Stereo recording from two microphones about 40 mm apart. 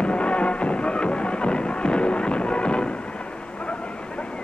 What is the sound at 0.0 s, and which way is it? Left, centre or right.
Music, left.